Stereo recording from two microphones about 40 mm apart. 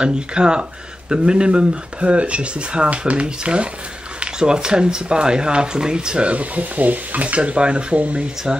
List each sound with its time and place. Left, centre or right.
0.0 s speech: right
6.3 s speech: right